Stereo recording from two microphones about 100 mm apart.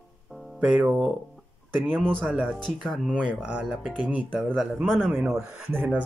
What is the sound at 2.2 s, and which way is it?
Speech, 15° right (ahead or behind).